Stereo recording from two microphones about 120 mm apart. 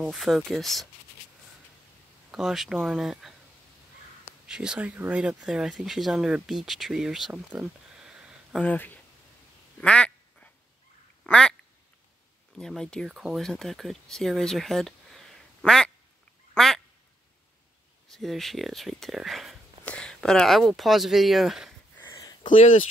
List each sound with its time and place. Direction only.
0.0 s speech: 5° right (ahead or behind)
2.3 s speech: 5° right (ahead or behind)
4.5 s speech: 5° right (ahead or behind)
8.5 s speech: 15° left (ahead or behind)
9.8 s quack: 10° left (ahead or behind)
12.5 s speech: 5° left (ahead or behind)
16.5 s quack: 5° left (ahead or behind)
18.1 s speech: centre (ahead or behind)
21.9 s sniff: 25° left (ahead or behind)